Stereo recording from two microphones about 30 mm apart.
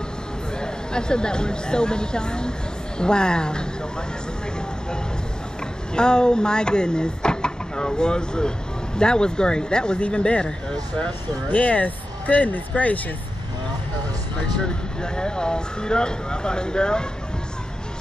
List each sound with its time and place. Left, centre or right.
0.6 s speech: left
5.9 s speech: left
11.5 s speech: left
14.6 s speech: left